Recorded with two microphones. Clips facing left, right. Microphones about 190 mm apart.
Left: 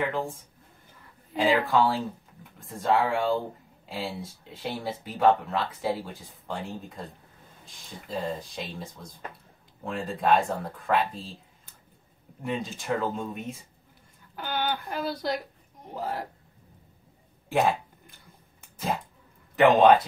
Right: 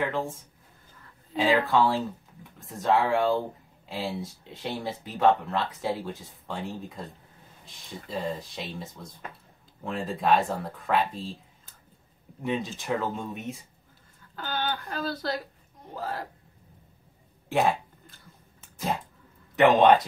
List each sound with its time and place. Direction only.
1.3 s speech: centre (ahead or behind)
7.6 s speech: centre (ahead or behind)
9.8 s speech: centre (ahead or behind)
12.4 s speech: centre (ahead or behind)
14.3 s speech: 15° left (ahead or behind)
17.5 s speech: centre (ahead or behind)
18.0 s a sound: 15° left (ahead or behind)
19.5 s speech: centre (ahead or behind)